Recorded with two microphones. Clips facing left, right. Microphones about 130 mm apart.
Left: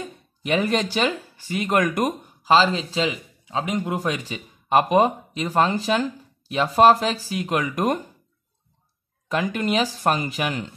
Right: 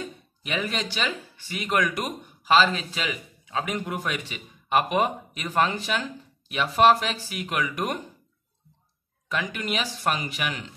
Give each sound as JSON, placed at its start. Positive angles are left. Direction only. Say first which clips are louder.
{"t": 0.4, "sound": "speech", "louder": "left 8 dB", "side_deg": 40}
{"t": 9.3, "sound": "speech", "louder": "left 6 dB", "side_deg": 40}